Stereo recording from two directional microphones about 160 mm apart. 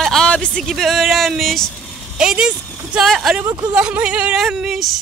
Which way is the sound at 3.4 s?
25° right (ahead or behind).